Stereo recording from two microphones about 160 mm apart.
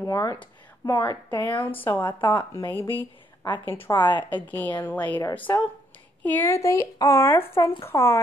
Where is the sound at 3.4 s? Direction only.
20° left (ahead or behind).